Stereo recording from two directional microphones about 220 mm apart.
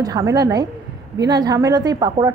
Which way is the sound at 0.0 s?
15° right (ahead or behind).